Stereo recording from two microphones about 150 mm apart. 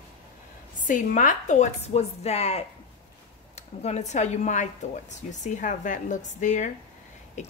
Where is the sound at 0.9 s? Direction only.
55° left (ahead or behind).